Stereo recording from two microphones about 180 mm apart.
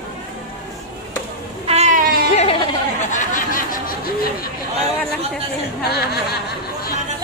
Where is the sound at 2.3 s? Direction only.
30° left (ahead or behind).